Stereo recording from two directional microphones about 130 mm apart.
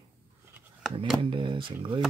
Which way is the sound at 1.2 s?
40° right (ahead or behind).